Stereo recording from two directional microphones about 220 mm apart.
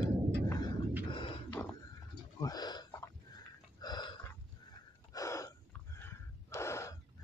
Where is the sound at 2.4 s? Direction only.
15° left (ahead or behind).